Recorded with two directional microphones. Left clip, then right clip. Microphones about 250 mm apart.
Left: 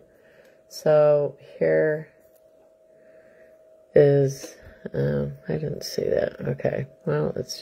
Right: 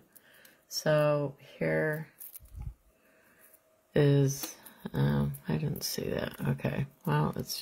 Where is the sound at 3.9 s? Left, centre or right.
Centre.